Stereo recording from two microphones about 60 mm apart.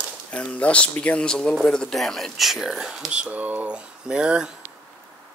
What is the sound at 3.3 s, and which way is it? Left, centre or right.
Speech, right.